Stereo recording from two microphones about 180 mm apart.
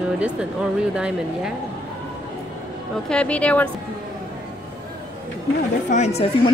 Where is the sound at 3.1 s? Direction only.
5° left (ahead or behind).